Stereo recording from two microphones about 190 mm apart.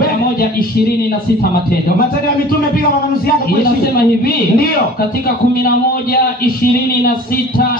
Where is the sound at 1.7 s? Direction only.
50° left (ahead or behind).